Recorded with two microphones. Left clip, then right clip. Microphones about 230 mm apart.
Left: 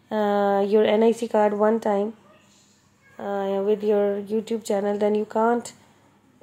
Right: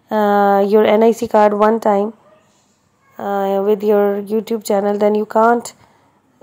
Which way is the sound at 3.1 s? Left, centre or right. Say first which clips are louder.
Right 8 dB; right.